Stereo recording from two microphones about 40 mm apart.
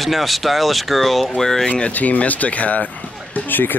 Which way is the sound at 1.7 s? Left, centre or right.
Left.